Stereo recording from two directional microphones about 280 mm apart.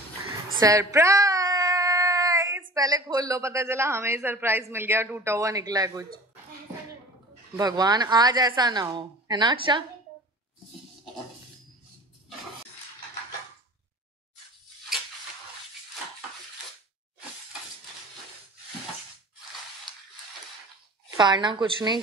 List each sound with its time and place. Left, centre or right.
0.6 s a sound: centre
2.7 s a woman's voice: centre
7.5 s a woman's voice: centre
21.2 s a woman's voice: centre